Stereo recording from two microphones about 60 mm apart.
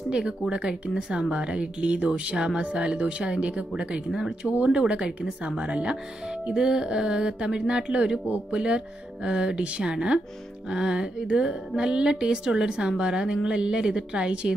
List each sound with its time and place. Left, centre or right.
0.5 s speech: centre